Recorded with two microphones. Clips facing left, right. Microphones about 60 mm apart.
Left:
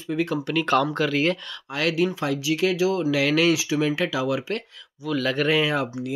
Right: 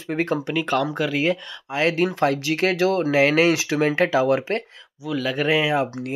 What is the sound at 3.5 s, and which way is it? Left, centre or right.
Speech, right.